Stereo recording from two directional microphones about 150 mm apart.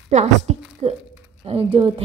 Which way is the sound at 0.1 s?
50° right (ahead or behind).